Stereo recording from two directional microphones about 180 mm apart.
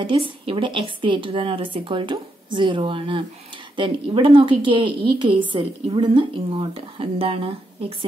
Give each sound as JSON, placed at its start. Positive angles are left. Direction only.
{"t": 0.0, "sound": "a woman's voice", "side_deg": -30}